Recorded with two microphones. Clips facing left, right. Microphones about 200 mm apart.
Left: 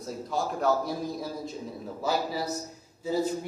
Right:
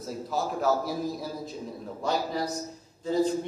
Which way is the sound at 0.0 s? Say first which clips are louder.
Even; centre (ahead or behind).